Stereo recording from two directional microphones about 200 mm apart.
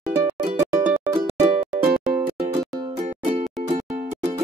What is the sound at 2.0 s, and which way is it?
Music, 5° right (ahead or behind).